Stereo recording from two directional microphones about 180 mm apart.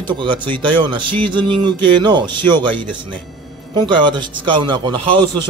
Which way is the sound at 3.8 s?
25° right (ahead or behind).